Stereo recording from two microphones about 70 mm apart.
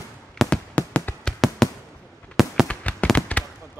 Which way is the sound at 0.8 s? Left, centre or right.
Left.